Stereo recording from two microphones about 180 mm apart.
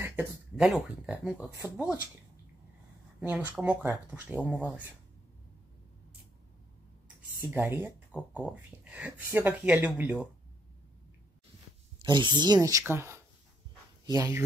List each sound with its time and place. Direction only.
0.0 s a sound: 15° right (ahead or behind)
0.7 s speech: 5° right (ahead or behind)
3.2 s speech: 10° right (ahead or behind)
7.3 s speech: 10° right (ahead or behind)
12.0 s speech: 25° right (ahead or behind)